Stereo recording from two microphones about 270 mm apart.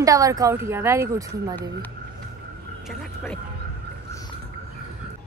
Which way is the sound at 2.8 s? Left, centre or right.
Centre.